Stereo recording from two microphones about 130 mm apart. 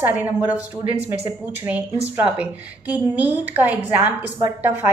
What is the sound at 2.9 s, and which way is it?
A woman's voice, 10° right (ahead or behind).